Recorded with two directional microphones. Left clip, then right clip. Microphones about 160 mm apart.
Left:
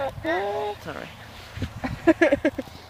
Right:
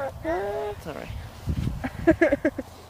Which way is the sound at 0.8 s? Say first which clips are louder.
Left 1 dB; 30° right (ahead or behind).